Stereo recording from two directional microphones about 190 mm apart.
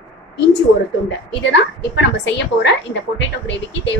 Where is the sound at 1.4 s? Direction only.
70° left (ahead or behind).